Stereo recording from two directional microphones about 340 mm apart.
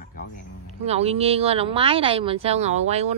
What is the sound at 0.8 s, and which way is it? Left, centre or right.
Speech, centre.